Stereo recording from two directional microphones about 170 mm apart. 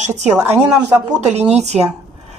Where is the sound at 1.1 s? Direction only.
40° right (ahead or behind).